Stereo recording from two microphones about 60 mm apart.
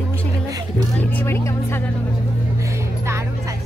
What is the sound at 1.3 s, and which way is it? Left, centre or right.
Speech, left.